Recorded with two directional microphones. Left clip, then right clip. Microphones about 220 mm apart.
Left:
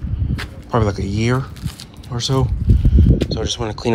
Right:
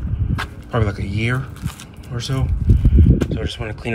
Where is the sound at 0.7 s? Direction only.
10° left (ahead or behind).